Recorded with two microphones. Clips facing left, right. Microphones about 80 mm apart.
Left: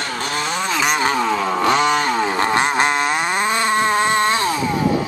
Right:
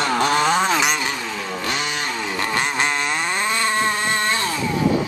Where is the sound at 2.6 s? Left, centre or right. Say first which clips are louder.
Left 5 dB; left.